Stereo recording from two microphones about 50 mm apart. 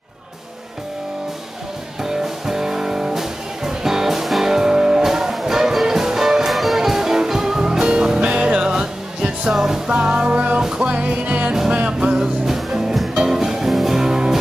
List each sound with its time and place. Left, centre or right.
2.0 s music: centre
12.4 s music: centre